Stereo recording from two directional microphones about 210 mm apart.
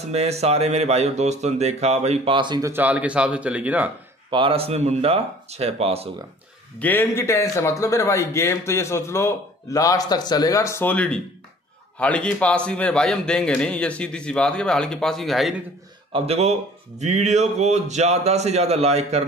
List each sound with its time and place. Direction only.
0.0 s speech: 30° right (ahead or behind); by 3.9 s 5° right (ahead or behind)
4.3 s speech: 25° right (ahead or behind)
6.8 s a man's voice: 10° left (ahead or behind)
16.1 s speech: 30° right (ahead or behind)